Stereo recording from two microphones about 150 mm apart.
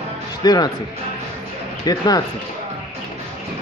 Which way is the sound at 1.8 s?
25° left (ahead or behind).